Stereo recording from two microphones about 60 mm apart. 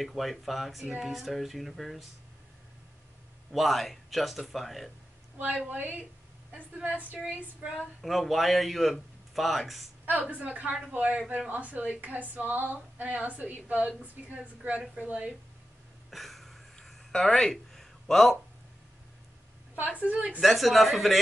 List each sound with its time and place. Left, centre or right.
0.0 s speech: centre
3.5 s speech: centre
5.7 s a woman's voice: right
8.0 s speech: centre
10.0 s a woman's voice: right
16.1 s a sound: centre
20.0 s a woman's voice: right
20.3 s speech: centre